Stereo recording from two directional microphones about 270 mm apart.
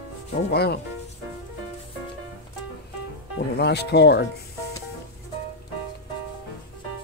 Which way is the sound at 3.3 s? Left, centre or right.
Left.